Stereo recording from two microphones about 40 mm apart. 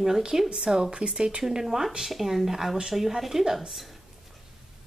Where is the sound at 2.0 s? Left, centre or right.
Centre.